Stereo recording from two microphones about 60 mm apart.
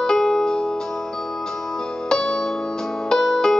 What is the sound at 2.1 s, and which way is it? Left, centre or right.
Music, centre.